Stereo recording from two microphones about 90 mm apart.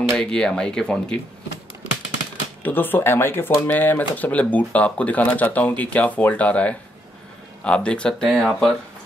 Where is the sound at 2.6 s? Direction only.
20° left (ahead or behind); by 8.8 s 5° left (ahead or behind).